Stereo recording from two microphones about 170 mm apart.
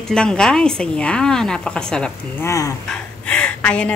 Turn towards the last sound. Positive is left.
turn(degrees=5)  # may be behind; listen again after turning